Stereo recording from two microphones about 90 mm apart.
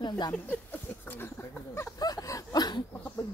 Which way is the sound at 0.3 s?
20° left (ahead or behind).